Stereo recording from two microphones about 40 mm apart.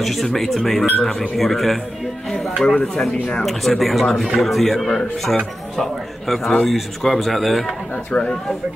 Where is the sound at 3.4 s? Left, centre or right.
Centre.